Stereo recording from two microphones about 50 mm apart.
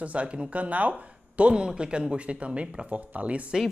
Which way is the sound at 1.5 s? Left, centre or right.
Centre.